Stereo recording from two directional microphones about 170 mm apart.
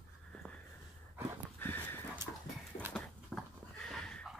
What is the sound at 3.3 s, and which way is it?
Goat, centre (ahead or behind).